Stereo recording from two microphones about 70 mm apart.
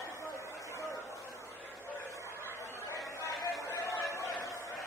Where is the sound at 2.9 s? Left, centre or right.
Left.